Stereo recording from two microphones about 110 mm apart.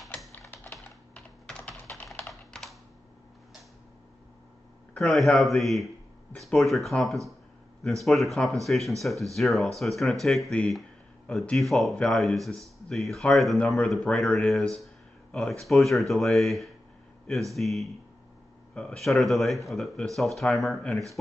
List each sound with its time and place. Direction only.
0.4 s typing: 20° left (ahead or behind)
0.7 s typing: 5° left (ahead or behind)
2.5 s computer keyboard: 5° left (ahead or behind)
4.9 s speech: centre (ahead or behind)